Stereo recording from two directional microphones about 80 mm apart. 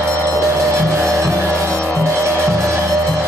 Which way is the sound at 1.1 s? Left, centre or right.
Right.